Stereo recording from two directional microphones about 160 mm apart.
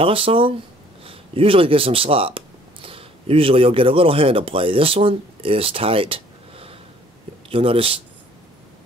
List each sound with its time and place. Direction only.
0.0 s speech: 35° right (ahead or behind)